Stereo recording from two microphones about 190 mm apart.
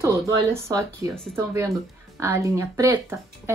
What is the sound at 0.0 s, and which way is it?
A woman's voice, 15° right (ahead or behind).